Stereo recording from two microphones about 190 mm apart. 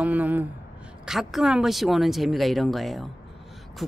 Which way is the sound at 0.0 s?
10° right (ahead or behind).